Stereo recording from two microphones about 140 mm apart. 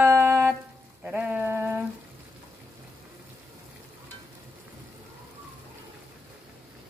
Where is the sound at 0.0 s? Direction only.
15° right (ahead or behind).